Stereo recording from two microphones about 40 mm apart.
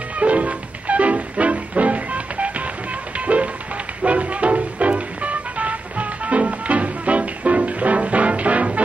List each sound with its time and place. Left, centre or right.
0.2 s music: right
4.0 s music: right